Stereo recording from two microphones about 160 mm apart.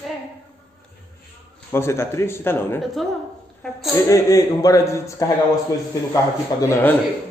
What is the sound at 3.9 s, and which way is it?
A man's voice, 20° left (ahead or behind).